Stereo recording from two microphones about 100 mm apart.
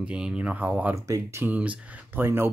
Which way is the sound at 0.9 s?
30° right (ahead or behind).